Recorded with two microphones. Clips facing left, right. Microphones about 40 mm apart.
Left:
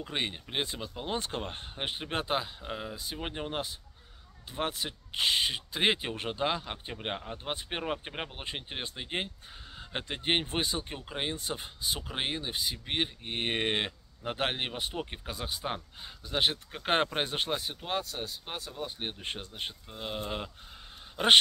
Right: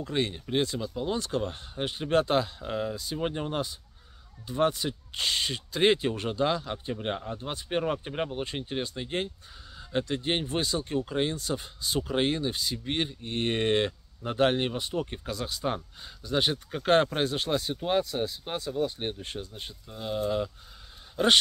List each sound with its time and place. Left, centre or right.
0.0 s speech: left
7.8 s speech: centre; by 17.5 s left
17.5 s speech: centre
17.7 s speech: centre
19.1 s speech: left
19.9 s speech: left